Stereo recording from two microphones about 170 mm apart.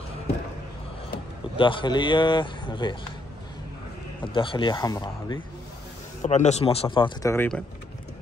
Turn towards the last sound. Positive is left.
turn(degrees=30)  # may be behind; listen again after turning